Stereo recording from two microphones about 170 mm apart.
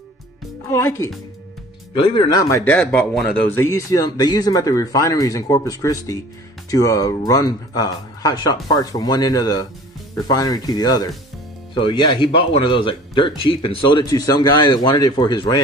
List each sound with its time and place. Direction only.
0.7 s a woman's voice: 15° left (ahead or behind)
2.6 s speech: 10° left (ahead or behind); by 15.6 s 25° left (ahead or behind)